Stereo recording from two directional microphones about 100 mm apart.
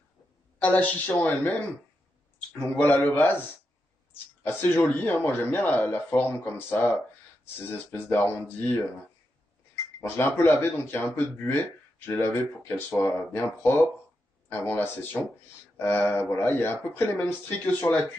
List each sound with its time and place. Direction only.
0.6 s speech: 15° left (ahead or behind)
4.4 s speech: 20° left (ahead or behind)
9.9 s speech: 25° left (ahead or behind)